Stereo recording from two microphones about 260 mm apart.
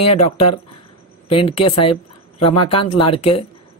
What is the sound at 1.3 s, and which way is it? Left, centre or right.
Speech, centre.